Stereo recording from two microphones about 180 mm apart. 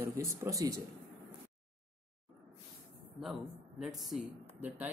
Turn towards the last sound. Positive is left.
turn(degrees=-10)  # may be behind; listen again after turning